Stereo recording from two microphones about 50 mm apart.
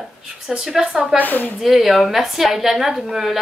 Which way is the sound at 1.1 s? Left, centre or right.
Left.